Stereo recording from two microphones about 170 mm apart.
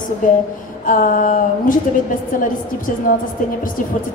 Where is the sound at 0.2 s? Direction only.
50° left (ahead or behind).